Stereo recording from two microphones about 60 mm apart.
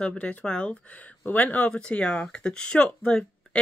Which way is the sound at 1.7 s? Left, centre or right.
Centre.